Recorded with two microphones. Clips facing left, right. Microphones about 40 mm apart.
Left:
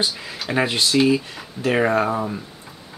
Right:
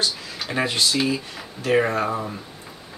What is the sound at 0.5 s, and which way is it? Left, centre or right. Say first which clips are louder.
Speech: left 2 dB; centre.